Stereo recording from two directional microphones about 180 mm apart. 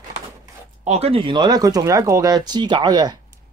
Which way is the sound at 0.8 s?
35° right (ahead or behind).